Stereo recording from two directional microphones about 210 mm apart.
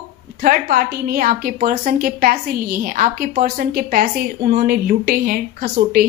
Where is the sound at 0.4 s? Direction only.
45° right (ahead or behind).